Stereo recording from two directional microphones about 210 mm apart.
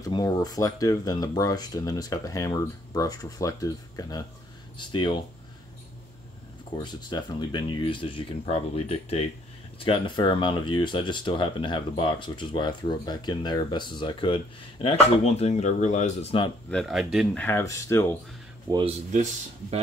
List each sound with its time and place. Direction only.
0.0 s speech: 20° left (ahead or behind)
6.8 s speech: 20° left (ahead or behind)
16.7 s speech: centre (ahead or behind)
18.7 s speech: 25° right (ahead or behind)